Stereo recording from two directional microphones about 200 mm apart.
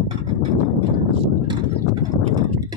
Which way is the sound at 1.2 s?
25° right (ahead or behind).